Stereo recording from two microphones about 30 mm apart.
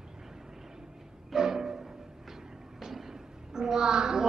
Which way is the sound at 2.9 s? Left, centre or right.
Centre.